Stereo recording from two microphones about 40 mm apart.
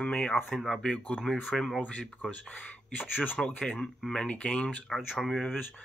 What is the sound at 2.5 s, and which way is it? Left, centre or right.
Speech, left.